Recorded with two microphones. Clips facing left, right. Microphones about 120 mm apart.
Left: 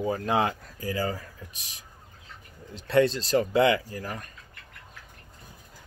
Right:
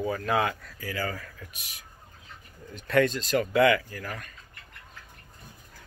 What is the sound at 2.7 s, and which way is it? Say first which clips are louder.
Speech: left 2 dB; 30° left (ahead or behind).